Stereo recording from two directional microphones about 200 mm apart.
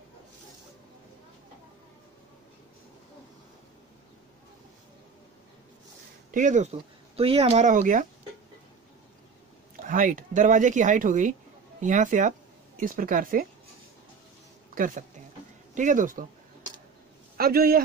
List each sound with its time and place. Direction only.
6.3 s speech: 35° right (ahead or behind)
9.8 s speech: 40° right (ahead or behind)
15.7 s speech: 40° right (ahead or behind)
17.4 s a man's voice: 50° right (ahead or behind)